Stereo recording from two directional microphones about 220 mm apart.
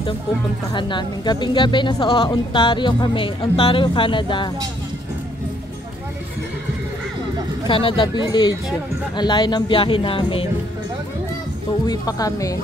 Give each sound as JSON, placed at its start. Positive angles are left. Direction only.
{"t": 0.7, "sound": "a woman's voice", "side_deg": 20}
{"t": 7.6, "sound": "a woman's voice", "side_deg": 25}
{"t": 11.8, "sound": "speech", "side_deg": 15}